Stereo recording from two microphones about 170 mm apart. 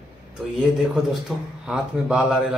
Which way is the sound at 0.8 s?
5° right (ahead or behind).